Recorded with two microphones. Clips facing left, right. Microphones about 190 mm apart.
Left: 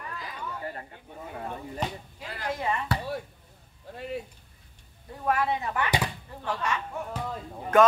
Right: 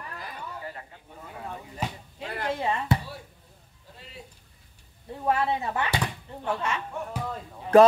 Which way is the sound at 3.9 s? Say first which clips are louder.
Left 13 dB; 55° left (ahead or behind).